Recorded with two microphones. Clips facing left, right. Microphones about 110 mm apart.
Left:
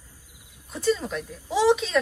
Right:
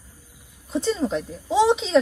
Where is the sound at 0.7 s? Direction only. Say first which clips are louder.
Right 2 dB; 25° right (ahead or behind).